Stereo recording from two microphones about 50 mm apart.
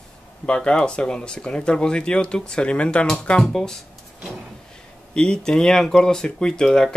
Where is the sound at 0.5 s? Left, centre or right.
Centre.